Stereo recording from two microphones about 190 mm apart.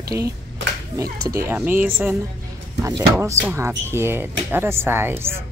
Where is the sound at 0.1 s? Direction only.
5° right (ahead or behind).